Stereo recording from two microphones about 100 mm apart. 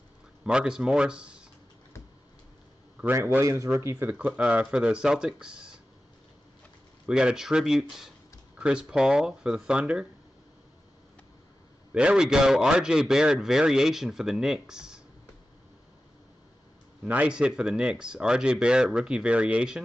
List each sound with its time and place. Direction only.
0.5 s a man's voice: 10° right (ahead or behind)
3.2 s speech: 25° right (ahead or behind)
4.4 s a man's voice: 10° right (ahead or behind)
7.1 s a man's voice: 10° right (ahead or behind)
11.9 s a man's voice: 10° right (ahead or behind)
17.0 s a man's voice: 10° right (ahead or behind)